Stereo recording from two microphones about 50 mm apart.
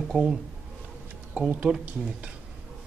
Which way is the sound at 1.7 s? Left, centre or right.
Right.